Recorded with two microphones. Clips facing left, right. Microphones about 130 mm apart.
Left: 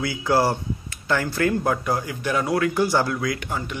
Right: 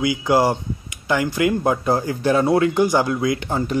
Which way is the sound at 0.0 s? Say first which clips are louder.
Right 3 dB; 15° right (ahead or behind).